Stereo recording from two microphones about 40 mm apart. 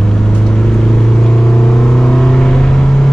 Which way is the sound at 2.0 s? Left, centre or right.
Centre.